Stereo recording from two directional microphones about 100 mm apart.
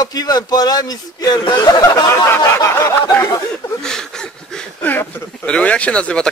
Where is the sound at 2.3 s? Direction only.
30° left (ahead or behind).